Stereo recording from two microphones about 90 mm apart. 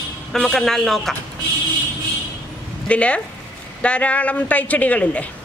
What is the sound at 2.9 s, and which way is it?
Speech, 15° left (ahead or behind).